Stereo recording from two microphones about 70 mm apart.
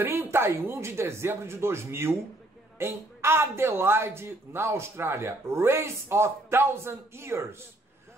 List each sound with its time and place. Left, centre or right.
0.0 s speech: right